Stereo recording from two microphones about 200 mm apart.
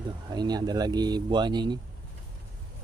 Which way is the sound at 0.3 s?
20° right (ahead or behind).